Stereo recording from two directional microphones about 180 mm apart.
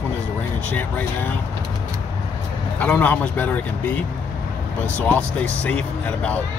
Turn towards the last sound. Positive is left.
turn(degrees=5)  # may be behind; listen again after turning